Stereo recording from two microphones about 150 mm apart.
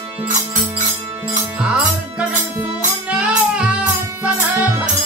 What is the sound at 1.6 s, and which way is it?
Music, 5° right (ahead or behind).